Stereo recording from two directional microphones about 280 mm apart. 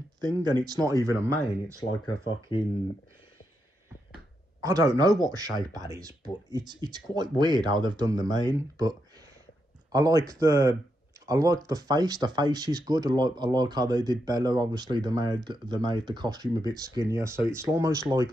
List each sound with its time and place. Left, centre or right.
0.2 s speech: centre
2.2 s speech: centre
4.6 s speech: centre
9.9 s speech: centre